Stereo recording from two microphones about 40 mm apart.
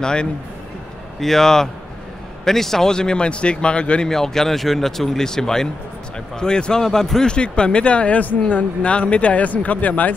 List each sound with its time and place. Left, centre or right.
0.0 s speech: left
1.2 s speech: centre; by 4.1 s left
4.1 s speech: centre; by 10.1 s left